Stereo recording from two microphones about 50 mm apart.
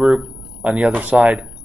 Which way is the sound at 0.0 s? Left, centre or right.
Centre.